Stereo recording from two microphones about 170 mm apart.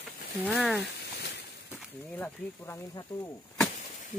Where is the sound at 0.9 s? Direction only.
75° left (ahead or behind).